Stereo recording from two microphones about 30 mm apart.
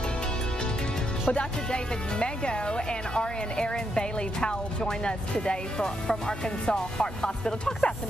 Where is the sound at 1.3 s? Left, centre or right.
Left.